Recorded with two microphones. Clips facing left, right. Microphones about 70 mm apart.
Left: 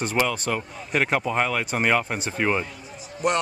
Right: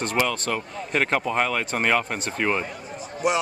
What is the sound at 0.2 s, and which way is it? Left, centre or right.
Speech, centre.